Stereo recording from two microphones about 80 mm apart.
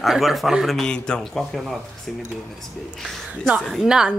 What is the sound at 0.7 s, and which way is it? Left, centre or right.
Speech, centre.